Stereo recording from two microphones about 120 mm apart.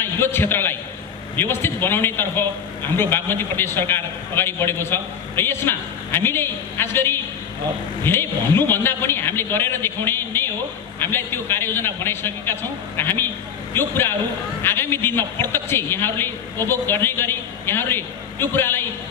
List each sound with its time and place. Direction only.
0.0 s a man's voice: 20° left (ahead or behind)